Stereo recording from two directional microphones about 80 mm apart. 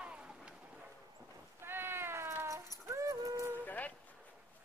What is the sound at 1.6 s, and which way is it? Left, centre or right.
Cat, right.